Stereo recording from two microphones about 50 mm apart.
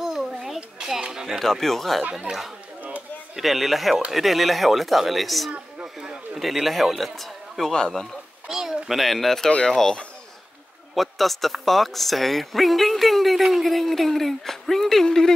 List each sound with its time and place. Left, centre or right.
0.0 s children playing: centre
0.6 s a sound: centre
1.4 s speech: centre
2.3 s speech: right
3.3 s a man's voice: centre
9.5 s speech: centre
11.0 s speech: centre